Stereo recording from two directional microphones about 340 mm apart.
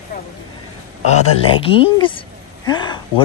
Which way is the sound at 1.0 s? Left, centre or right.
Centre.